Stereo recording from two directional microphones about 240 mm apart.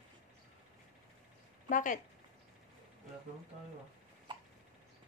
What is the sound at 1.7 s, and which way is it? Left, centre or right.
Speech, left.